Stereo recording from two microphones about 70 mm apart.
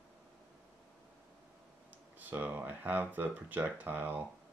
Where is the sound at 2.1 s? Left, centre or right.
Right.